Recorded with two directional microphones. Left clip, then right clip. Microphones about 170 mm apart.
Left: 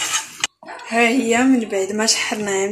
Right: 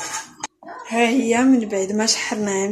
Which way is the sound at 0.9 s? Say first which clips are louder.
Left 2 dB; 20° right (ahead or behind).